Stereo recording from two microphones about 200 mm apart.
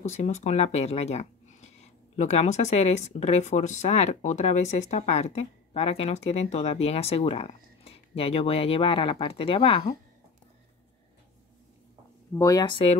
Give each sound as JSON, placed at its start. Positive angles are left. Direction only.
{"t": 0.0, "sound": "speech", "side_deg": 35}
{"t": 12.4, "sound": "speech", "side_deg": 20}